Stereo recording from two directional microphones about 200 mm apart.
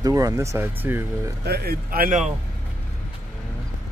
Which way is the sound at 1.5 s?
50° right (ahead or behind).